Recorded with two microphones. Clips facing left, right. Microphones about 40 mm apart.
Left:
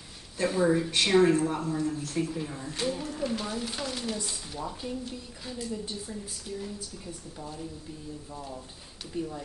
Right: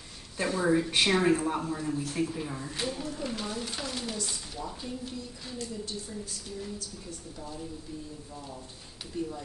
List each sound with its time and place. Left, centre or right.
0.5 s a sound: centre
0.7 s speech: centre
6.8 s a woman's voice: centre
9.1 s a woman's voice: centre